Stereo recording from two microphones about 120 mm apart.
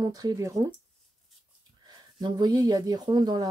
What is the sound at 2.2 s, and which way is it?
Speech, 35° right (ahead or behind).